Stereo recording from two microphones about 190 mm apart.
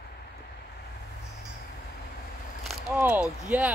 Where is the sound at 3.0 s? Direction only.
5° right (ahead or behind).